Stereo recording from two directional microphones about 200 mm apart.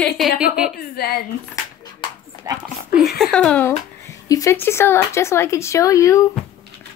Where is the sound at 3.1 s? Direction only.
5° left (ahead or behind).